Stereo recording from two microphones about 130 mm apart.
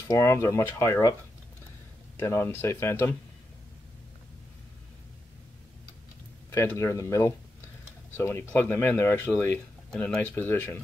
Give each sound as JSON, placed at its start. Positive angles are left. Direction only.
{"t": 0.1, "sound": "speech", "side_deg": 20}
{"t": 2.1, "sound": "speech", "side_deg": 20}
{"t": 6.5, "sound": "speech", "side_deg": 20}